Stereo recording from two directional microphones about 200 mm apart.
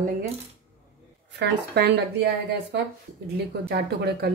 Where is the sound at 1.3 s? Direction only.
55° right (ahead or behind).